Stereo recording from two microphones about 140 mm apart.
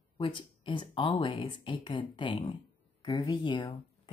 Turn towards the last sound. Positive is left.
turn(degrees=35)  # may be behind; listen again after turning